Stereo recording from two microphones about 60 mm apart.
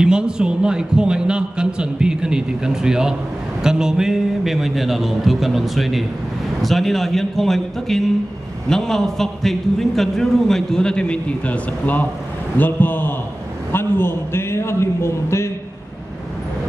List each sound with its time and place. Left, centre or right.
0.0 s a man's voice: centre; by 15.5 s left